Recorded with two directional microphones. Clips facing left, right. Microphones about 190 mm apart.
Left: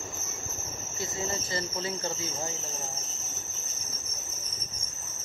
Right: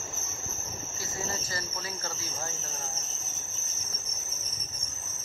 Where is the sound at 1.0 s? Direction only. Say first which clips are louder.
Left 4 dB; 25° left (ahead or behind).